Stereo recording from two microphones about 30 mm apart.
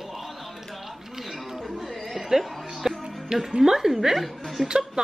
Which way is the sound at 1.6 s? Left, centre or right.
Centre.